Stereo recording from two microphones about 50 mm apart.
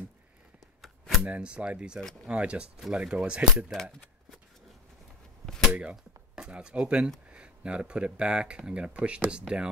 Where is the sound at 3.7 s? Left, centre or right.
Centre.